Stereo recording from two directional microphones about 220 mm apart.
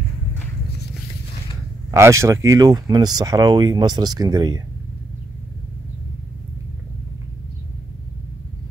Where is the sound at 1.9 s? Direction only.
15° right (ahead or behind).